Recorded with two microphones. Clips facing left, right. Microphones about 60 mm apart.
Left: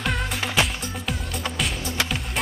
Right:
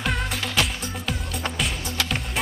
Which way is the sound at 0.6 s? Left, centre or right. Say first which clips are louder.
Left 2 dB; centre.